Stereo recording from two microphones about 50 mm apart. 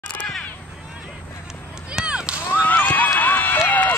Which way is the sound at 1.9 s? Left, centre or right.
Centre.